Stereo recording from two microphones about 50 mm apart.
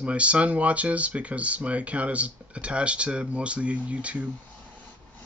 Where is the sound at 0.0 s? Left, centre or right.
Right.